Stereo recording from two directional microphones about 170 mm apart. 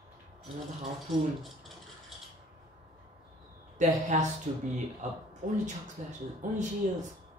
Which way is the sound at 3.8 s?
45° right (ahead or behind).